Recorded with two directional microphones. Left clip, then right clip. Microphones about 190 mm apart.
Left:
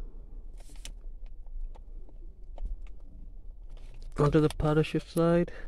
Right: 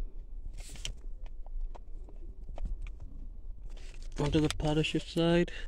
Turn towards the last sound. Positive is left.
turn(degrees=20)  # may be behind; listen again after turning